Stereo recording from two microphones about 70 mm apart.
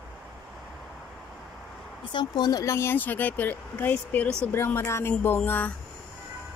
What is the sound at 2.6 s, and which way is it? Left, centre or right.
Speech, left.